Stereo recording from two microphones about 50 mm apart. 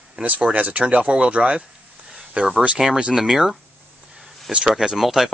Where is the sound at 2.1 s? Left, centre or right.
Centre.